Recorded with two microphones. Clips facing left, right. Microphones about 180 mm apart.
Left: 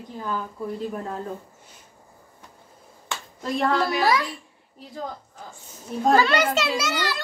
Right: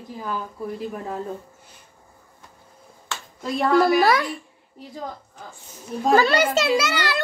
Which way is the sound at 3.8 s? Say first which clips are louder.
Right 5 dB; 60° right (ahead or behind).